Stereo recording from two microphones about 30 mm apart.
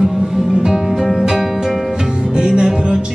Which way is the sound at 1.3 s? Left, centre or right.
Centre.